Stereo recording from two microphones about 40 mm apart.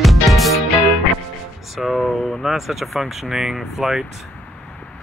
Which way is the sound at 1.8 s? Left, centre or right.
Centre.